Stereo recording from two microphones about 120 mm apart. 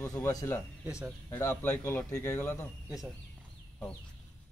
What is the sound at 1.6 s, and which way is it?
Speech, 15° left (ahead or behind).